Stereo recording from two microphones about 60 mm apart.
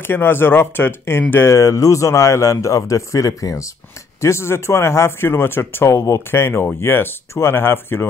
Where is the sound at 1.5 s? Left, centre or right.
Left.